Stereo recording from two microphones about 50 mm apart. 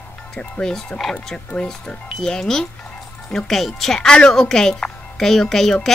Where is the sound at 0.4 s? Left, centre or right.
Centre.